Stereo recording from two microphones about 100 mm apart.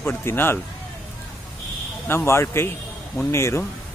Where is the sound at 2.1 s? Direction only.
25° left (ahead or behind).